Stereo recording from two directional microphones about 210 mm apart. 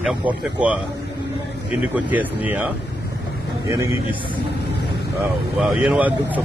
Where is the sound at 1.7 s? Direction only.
5° right (ahead or behind).